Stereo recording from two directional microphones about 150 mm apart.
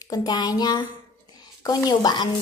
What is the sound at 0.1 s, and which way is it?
A woman's voice, 25° left (ahead or behind).